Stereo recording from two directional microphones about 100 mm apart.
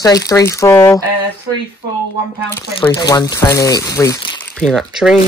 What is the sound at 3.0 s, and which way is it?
Speech, 40° left (ahead or behind).